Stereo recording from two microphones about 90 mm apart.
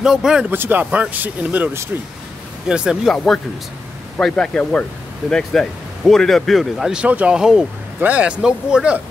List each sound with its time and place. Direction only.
0.0 s speech: 5° right (ahead or behind)
0.5 s speech: 20° right (ahead or behind)
2.7 s speech: 10° right (ahead or behind)
4.2 s speech: 10° left (ahead or behind); by 9.0 s 10° right (ahead or behind)